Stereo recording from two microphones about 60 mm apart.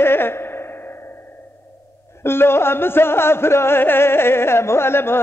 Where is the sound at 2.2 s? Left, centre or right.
Left.